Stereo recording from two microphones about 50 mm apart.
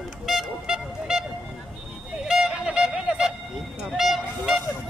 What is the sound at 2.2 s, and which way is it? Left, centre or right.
Music, centre.